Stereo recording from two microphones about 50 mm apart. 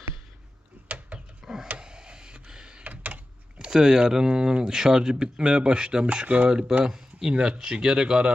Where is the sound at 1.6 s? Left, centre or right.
Right.